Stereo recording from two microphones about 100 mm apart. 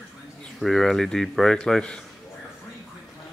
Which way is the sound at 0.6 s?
Centre (ahead or behind).